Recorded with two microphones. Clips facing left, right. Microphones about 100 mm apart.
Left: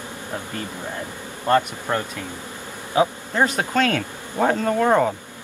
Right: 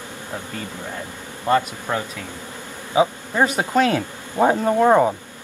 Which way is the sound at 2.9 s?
10° right (ahead or behind).